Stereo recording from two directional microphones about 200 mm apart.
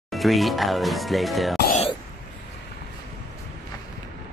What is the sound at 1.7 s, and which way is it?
Throat clearing, 30° left (ahead or behind).